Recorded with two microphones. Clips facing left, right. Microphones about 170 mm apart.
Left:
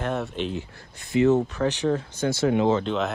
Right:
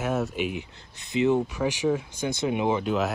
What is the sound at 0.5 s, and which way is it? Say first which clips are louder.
Speech: left 2 dB; 20° right (ahead or behind).